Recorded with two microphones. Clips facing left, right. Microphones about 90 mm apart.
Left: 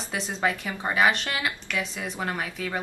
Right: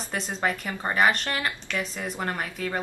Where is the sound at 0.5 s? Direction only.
5° left (ahead or behind).